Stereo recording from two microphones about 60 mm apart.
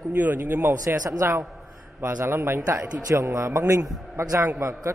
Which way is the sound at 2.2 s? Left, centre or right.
Right.